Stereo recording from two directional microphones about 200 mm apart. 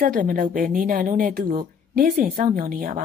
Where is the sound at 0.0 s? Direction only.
45° right (ahead or behind).